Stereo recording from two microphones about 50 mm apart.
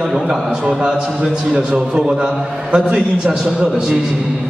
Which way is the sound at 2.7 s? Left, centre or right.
Centre.